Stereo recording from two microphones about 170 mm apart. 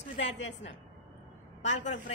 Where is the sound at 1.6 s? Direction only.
45° left (ahead or behind).